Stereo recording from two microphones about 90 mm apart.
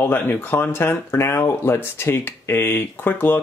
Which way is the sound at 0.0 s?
25° left (ahead or behind).